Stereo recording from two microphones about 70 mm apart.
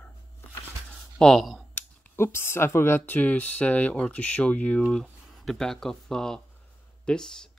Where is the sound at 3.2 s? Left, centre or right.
Left.